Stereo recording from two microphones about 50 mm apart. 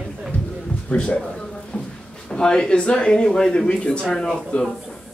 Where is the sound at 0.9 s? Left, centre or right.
Left.